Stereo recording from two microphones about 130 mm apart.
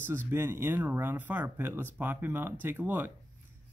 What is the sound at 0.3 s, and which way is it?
Speech, 15° right (ahead or behind).